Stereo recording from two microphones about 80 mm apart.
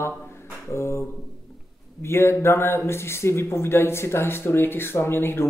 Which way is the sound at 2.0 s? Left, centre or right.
Left.